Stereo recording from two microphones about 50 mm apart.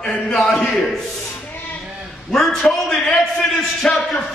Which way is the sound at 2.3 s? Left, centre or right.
Centre.